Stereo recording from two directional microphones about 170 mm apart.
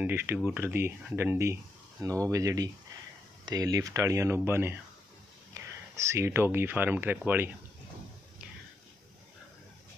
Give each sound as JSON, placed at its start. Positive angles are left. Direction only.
{"t": 0.0, "sound": "speech", "side_deg": -10}